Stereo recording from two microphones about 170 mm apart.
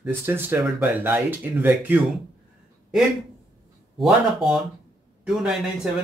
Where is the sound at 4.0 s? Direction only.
Centre (ahead or behind).